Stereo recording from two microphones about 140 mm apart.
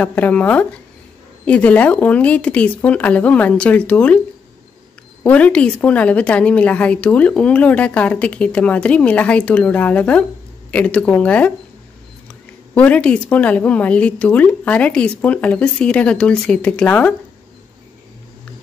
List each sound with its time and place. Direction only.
0.0 s a woman's voice: 10° left (ahead or behind)
5.2 s a woman's voice: 10° left (ahead or behind)